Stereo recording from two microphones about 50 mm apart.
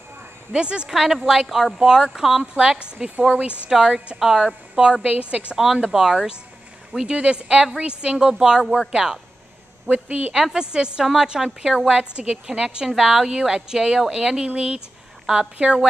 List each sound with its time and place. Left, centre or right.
0.5 s speech: right
0.8 s a woman's voice: centre
5.0 s speech: right
5.6 s a woman's voice: centre
9.8 s speech: right
10.3 s a woman's voice: centre